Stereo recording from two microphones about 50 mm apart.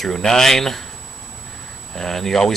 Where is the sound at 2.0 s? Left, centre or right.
Centre.